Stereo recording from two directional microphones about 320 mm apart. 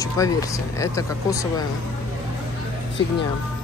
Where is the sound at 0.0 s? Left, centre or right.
Centre.